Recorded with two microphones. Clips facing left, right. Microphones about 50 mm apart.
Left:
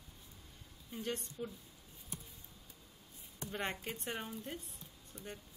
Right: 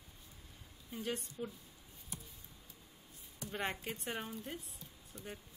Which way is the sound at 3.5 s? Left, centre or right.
Centre.